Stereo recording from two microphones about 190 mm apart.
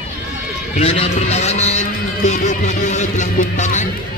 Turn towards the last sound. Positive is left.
turn(degrees=40)  # may be behind; listen again after turning